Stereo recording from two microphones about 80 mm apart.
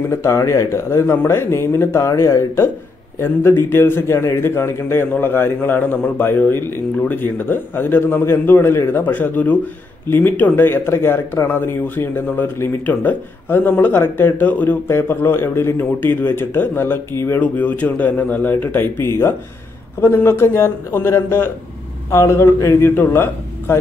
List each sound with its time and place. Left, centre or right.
0.1 s a man's voice: left
17.4 s a man's voice: centre